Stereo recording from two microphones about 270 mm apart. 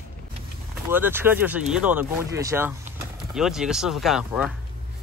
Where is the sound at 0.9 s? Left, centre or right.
Centre.